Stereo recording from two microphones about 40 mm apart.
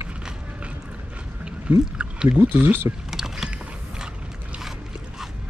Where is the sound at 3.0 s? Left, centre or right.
Centre.